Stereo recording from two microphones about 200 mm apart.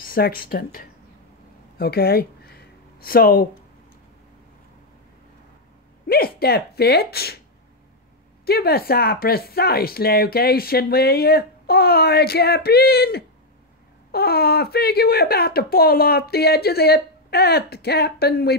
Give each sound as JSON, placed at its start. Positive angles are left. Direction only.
{"t": 0.0, "sound": "speech", "side_deg": 45}
{"t": 1.8, "sound": "a sound", "side_deg": 50}
{"t": 6.0, "sound": "speech", "side_deg": 50}
{"t": 8.5, "sound": "speech", "side_deg": 50}